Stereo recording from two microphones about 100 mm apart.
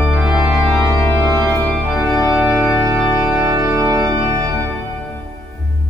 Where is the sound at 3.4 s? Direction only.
30° right (ahead or behind).